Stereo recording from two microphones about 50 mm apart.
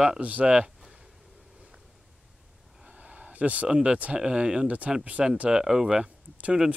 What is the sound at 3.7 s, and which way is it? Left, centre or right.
Speech, centre.